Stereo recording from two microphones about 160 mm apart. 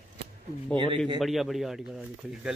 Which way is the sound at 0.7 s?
30° right (ahead or behind).